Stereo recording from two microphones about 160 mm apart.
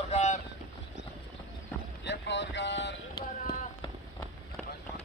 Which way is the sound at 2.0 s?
90° left.